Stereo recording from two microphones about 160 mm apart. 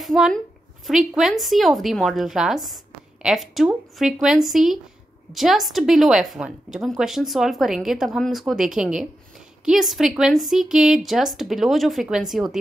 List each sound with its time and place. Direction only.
0.0 s a woman's voice: centre (ahead or behind)